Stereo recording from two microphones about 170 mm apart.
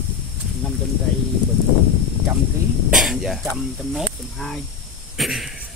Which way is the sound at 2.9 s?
Centre (ahead or behind).